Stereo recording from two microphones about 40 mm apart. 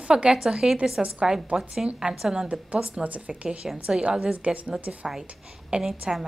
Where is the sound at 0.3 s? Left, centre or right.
Centre.